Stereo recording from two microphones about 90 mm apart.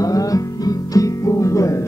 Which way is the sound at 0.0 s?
40° left (ahead or behind).